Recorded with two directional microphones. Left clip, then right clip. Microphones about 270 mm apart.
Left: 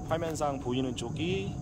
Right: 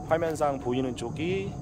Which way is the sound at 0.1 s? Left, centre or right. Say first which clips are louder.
Right 5 dB; centre.